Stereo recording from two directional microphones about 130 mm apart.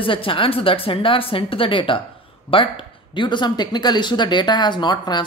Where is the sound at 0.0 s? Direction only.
40° left (ahead or behind).